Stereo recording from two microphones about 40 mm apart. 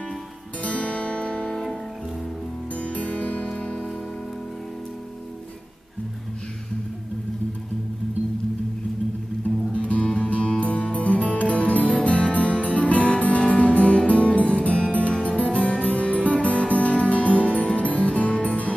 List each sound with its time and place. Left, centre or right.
0.6 s music: left
2.7 s music: left
9.7 s music: left